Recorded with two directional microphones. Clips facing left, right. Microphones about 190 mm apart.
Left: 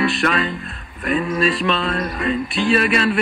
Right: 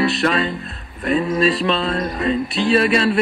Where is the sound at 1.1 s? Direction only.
25° right (ahead or behind).